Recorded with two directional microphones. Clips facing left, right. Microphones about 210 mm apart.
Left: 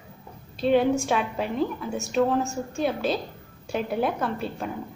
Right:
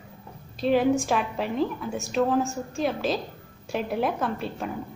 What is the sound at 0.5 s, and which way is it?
A woman's voice, centre (ahead or behind).